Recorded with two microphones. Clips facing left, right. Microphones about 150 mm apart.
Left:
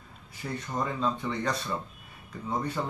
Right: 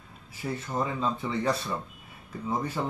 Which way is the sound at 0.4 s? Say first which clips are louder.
Right 2 dB; 10° right (ahead or behind).